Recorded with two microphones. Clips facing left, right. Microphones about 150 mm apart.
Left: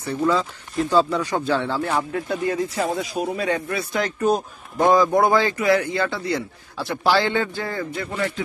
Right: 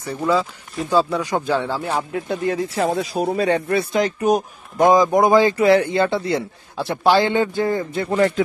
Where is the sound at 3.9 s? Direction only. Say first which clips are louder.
Right 1 dB; 15° right (ahead or behind).